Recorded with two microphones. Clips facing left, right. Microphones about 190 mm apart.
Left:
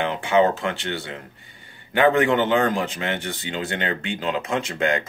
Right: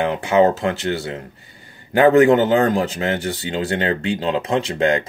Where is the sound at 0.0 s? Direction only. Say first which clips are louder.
Right 4 dB; 40° right (ahead or behind).